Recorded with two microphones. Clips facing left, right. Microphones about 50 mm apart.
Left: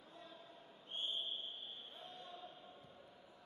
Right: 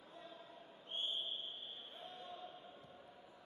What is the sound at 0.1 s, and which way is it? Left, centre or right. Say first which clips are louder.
Basketball bounce: right 2 dB; centre.